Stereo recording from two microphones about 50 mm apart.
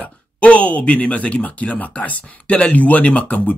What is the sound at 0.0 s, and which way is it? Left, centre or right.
Speech, left.